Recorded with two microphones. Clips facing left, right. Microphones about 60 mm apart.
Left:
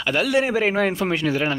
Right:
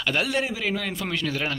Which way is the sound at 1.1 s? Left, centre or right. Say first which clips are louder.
Left 6 dB; left.